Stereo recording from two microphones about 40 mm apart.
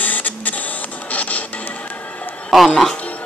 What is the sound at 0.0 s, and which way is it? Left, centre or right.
Printer, left.